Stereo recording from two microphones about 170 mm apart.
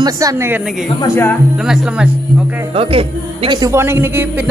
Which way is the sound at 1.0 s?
15° left (ahead or behind).